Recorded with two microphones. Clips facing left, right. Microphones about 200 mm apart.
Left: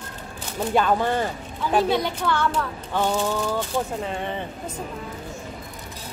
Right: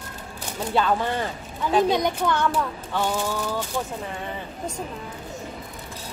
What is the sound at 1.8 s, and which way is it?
Speech, 15° right (ahead or behind).